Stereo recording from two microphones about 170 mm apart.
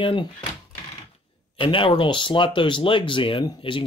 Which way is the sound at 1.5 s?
30° left (ahead or behind).